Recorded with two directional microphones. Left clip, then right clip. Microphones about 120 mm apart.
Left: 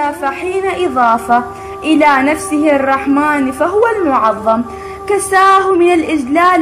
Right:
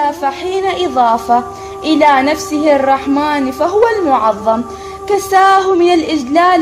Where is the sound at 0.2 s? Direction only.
45° right (ahead or behind).